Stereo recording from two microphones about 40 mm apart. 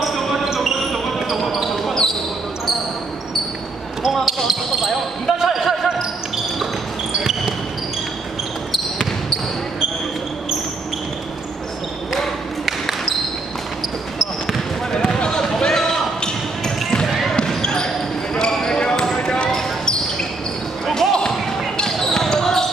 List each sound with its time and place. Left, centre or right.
0.6 s basketball bounce: centre
4.1 s speech: centre
5.4 s basketball bounce: centre
7.2 s basketball bounce: centre
12.2 s a sound: centre
14.9 s basketball bounce: centre
20.8 s basketball bounce: centre
21.2 s basketball bounce: centre